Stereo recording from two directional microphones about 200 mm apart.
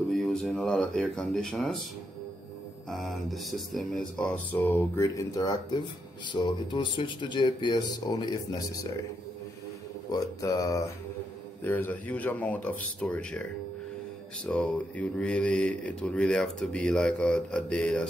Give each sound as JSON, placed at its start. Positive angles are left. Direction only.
{"t": 0.1, "sound": "speech", "side_deg": 0}
{"t": 2.9, "sound": "speech", "side_deg": 0}
{"t": 10.1, "sound": "speech", "side_deg": 15}